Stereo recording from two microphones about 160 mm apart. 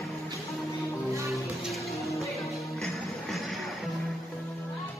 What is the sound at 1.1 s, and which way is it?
Music, 20° right (ahead or behind).